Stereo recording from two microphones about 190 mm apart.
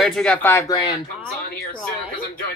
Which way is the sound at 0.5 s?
20° left (ahead or behind).